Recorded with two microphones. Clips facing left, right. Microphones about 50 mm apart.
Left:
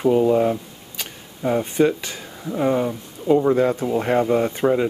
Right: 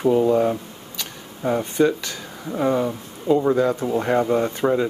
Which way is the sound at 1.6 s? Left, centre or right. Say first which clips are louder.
Even; centre.